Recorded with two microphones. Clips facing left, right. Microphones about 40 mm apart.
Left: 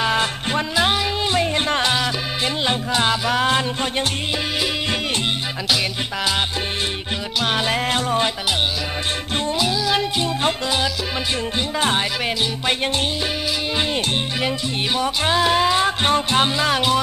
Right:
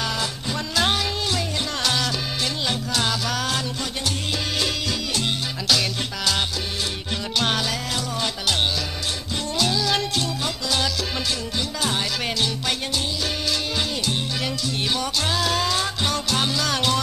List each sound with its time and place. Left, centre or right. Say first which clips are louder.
0.0 s music: left 6 dB; left
0.7 s music: left 2 dB; centre
1.3 s music: left 7 dB; left
7.5 s music: left 5 dB; left
9.6 s music: even; centre
10.2 s music: left 6 dB; left
15.0 s music: left 5 dB; left